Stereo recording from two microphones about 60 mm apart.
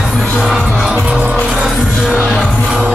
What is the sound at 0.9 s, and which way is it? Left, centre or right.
Music, centre.